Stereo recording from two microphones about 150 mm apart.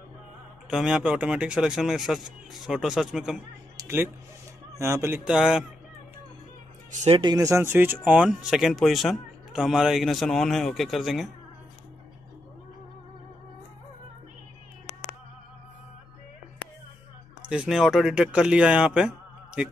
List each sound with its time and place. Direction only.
0.7 s speech: 5° right (ahead or behind)
3.7 s a sound: 15° right (ahead or behind)
4.7 s speech: 20° right (ahead or behind)
5.2 s speech: 5° right (ahead or behind)
6.9 s speech: 55° right (ahead or behind)
7.2 s speech: 25° right (ahead or behind); by 11.2 s centre (ahead or behind)
17.5 s speech: 5° right (ahead or behind)